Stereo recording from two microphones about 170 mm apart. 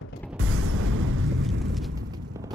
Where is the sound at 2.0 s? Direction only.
20° right (ahead or behind).